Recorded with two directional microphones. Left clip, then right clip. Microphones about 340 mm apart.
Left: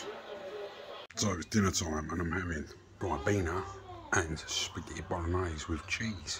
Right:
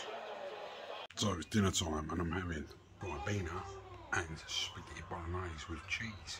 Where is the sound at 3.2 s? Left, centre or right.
Centre.